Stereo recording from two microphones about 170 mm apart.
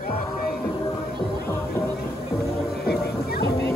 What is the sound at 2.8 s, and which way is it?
Music, 70° left (ahead or behind).